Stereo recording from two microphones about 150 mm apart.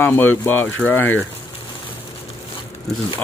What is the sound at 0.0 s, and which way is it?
Speech, 15° left (ahead or behind).